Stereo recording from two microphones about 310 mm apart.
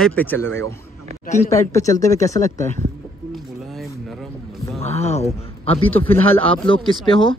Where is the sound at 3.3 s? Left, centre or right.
Centre.